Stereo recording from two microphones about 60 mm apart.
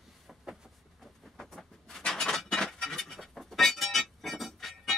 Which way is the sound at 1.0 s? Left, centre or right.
Centre.